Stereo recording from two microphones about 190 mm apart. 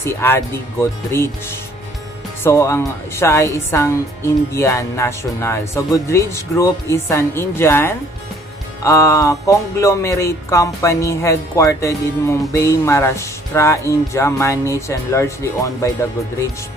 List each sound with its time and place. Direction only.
0.0 s speech: 10° left (ahead or behind)